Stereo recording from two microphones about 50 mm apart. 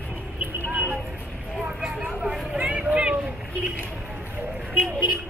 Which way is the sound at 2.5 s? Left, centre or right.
Right.